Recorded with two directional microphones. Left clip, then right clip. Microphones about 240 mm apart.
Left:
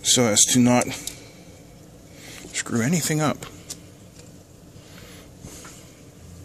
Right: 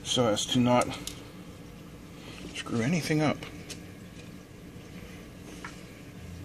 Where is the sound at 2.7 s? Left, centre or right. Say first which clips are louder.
Left 4 dB; left.